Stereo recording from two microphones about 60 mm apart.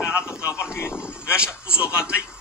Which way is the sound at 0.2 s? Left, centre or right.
Left.